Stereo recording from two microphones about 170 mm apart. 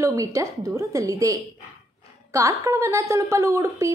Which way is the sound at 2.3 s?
20° right (ahead or behind).